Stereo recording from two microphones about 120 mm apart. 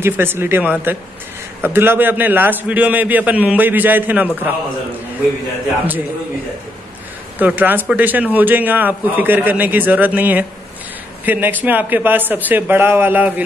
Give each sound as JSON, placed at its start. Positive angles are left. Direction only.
{"t": 0.0, "sound": "a man's voice", "side_deg": -20}
{"t": 7.3, "sound": "a man's voice", "side_deg": -15}